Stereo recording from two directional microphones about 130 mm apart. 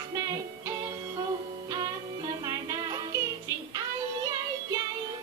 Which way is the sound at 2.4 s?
30° right (ahead or behind).